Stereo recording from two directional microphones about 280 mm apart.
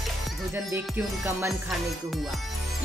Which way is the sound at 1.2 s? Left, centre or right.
Centre.